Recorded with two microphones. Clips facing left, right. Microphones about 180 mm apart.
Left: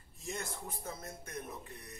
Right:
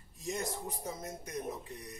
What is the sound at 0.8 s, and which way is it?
Speech, 15° right (ahead or behind).